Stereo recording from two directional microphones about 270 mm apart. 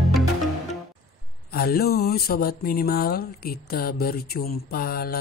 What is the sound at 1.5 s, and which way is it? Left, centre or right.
Speech, left.